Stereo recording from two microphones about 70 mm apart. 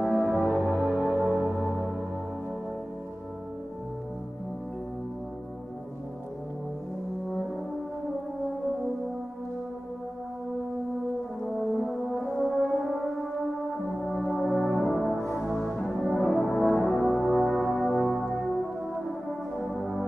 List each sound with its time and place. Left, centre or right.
0.0 s music: centre
1.0 s music: centre
1.4 s music: centre
11.8 s brass instrument: centre
14.0 s music: centre
19.6 s music: centre